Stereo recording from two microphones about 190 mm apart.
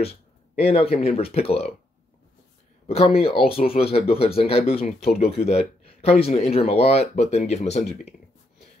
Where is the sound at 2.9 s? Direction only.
30° left (ahead or behind).